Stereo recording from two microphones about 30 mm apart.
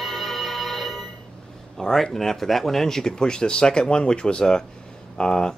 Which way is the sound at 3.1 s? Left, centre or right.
Left.